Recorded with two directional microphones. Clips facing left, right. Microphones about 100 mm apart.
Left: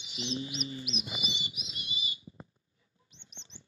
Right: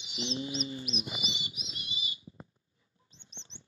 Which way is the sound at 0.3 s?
30° right (ahead or behind).